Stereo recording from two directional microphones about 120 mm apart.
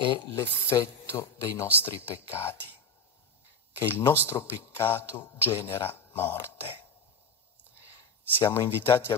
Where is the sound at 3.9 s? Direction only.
20° left (ahead or behind).